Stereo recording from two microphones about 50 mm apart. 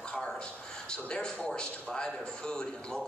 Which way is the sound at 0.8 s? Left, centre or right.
Left.